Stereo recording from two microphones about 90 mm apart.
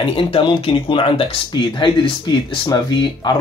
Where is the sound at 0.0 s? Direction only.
75° left (ahead or behind).